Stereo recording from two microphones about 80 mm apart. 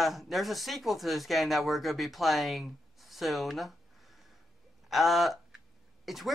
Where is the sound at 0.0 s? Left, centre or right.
Centre.